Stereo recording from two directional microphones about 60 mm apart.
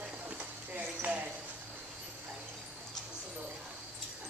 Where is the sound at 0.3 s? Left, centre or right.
Right.